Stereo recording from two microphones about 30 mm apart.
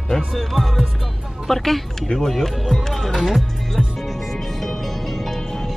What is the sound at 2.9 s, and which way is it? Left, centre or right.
Music, centre.